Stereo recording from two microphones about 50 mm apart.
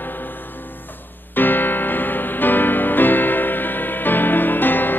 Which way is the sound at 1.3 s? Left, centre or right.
Left.